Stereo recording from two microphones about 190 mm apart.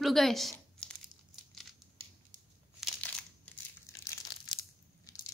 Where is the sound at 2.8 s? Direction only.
5° left (ahead or behind).